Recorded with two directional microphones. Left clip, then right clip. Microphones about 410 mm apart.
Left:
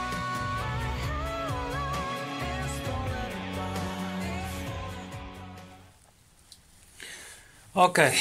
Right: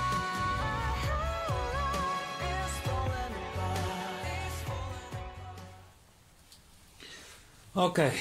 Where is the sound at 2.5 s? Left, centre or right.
Centre.